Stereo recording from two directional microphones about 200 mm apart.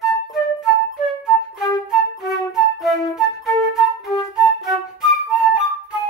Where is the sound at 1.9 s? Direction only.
Centre (ahead or behind).